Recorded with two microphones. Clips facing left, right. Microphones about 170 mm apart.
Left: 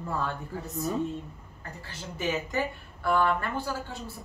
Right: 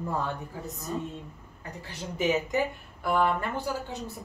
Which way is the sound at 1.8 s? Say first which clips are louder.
Right 4 dB; 15° right (ahead or behind).